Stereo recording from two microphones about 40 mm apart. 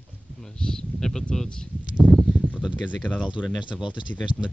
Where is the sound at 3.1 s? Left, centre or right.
Left.